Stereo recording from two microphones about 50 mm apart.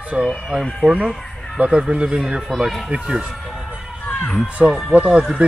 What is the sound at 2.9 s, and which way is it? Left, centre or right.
Speech, centre.